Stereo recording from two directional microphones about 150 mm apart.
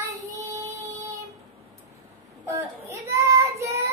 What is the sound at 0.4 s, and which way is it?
Child singing, 20° right (ahead or behind).